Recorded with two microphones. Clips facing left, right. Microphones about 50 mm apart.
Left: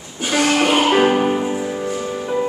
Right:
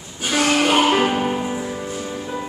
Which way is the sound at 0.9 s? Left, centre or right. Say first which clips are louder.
Left 4 dB; centre.